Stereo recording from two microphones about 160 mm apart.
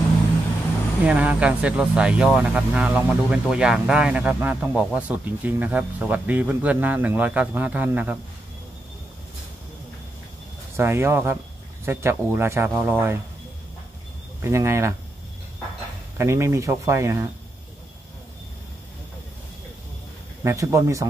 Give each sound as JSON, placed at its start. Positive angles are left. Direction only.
{"t": 1.0, "sound": "speech", "side_deg": -5}
{"t": 10.8, "sound": "speech", "side_deg": -15}
{"t": 14.4, "sound": "speech", "side_deg": -15}
{"t": 16.2, "sound": "speech", "side_deg": -15}
{"t": 20.4, "sound": "speech", "side_deg": -20}